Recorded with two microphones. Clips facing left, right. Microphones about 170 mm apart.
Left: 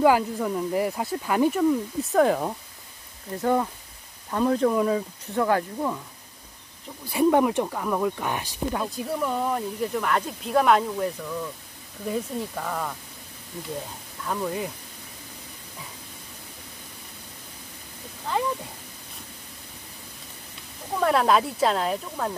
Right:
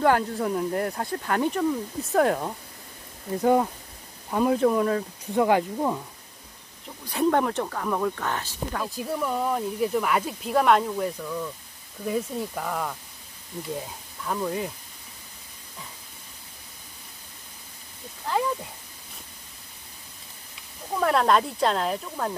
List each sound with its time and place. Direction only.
0.0 s speech: 5° left (ahead or behind)
3.3 s speech: 15° right (ahead or behind); by 5.0 s centre (ahead or behind)
5.2 s speech: 15° right (ahead or behind)
7.1 s speech: 10° left (ahead or behind)
8.8 s speech: centre (ahead or behind)
14.2 s speech: centre (ahead or behind)
21.0 s speech: centre (ahead or behind)